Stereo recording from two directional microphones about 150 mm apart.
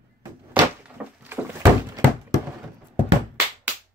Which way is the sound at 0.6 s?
30° right (ahead or behind).